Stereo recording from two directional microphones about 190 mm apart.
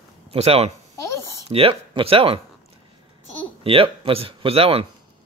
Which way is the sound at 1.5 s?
30° right (ahead or behind).